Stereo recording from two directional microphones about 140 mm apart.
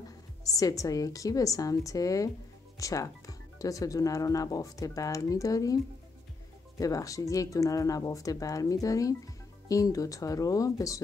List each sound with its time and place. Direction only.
0.5 s speech: 25° left (ahead or behind)
6.8 s speech: 25° left (ahead or behind)